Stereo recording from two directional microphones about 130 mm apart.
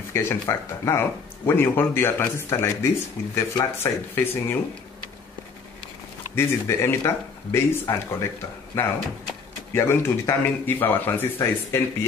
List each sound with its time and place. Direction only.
0.1 s speech: 20° left (ahead or behind)
6.3 s speech: 20° left (ahead or behind)